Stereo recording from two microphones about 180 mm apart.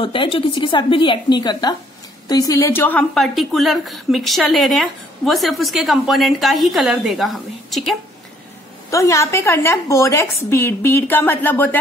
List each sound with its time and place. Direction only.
0.0 s a woman's voice: 30° left (ahead or behind); by 8.0 s centre (ahead or behind)
8.9 s a woman's voice: 15° left (ahead or behind)